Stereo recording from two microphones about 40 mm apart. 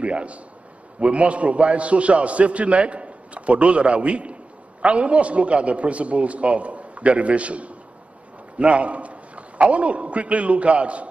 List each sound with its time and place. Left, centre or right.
0.0 s a man's voice: right